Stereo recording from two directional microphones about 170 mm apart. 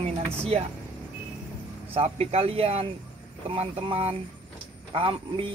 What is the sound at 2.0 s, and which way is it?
Speech, 35° right (ahead or behind).